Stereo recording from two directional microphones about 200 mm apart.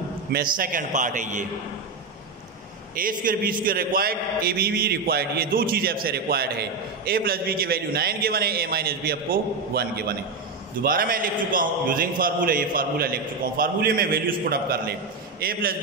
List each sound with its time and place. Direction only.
0.3 s a man's voice: 45° right (ahead or behind)
3.0 s a man's voice: 45° right (ahead or behind)